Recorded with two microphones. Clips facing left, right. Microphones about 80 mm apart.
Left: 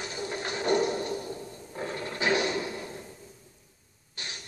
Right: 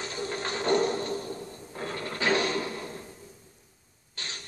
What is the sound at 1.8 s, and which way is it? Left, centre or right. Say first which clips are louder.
Mechanisms: even; left.